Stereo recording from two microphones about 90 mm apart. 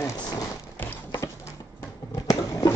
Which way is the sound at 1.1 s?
35° left (ahead or behind).